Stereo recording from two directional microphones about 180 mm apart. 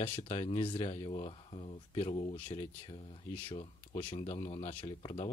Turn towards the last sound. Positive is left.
turn(degrees=30)  # may be behind; listen again after turning